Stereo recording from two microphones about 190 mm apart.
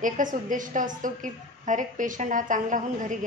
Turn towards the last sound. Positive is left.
turn(degrees=-45)  # may be behind; listen again after turning